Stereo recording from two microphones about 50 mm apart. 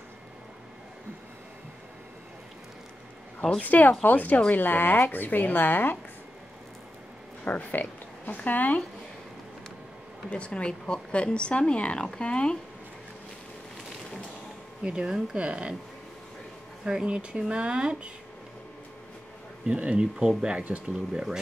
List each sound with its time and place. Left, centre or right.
3.6 s a woman's voice: left
7.4 s a woman's voice: left
10.3 s speech: left
14.8 s speech: centre
16.8 s speech: centre
19.6 s speech: right
20.9 s speech: centre